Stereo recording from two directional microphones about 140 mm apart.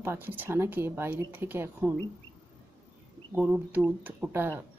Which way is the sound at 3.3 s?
10° right (ahead or behind).